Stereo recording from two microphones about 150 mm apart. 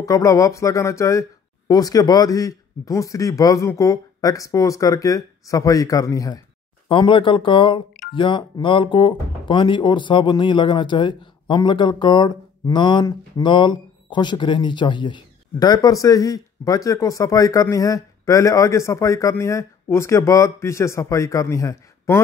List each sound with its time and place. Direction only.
0.0 s speech: 20° left (ahead or behind)
6.9 s speech: 35° left (ahead or behind); by 22.2 s 20° left (ahead or behind)